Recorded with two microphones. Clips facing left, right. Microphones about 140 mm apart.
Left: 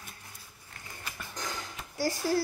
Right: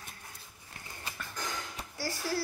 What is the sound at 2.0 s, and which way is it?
Speech, 15° left (ahead or behind).